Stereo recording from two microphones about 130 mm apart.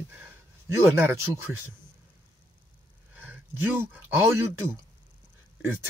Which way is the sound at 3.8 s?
15° right (ahead or behind).